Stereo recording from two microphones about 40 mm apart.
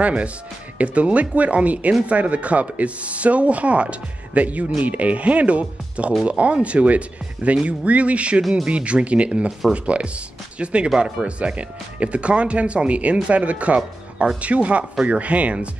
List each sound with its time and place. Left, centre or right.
0.0 s speech: right
8.4 s speech: centre
8.6 s speech: right